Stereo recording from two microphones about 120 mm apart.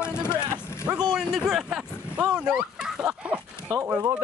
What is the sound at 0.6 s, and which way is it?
Vehicle, 25° left (ahead or behind).